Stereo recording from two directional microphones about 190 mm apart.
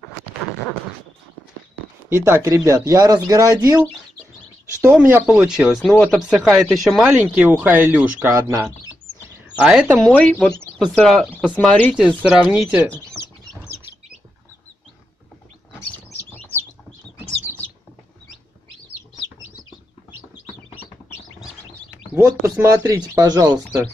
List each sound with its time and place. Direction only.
2.0 s speech: 10° right (ahead or behind)
5.1 s speech: 10° right (ahead or behind)
10.6 s a sound: centre (ahead or behind)
11.0 s speech: 5° left (ahead or behind)
16.3 s bird: 10° left (ahead or behind)
22.1 s speech: 15° right (ahead or behind)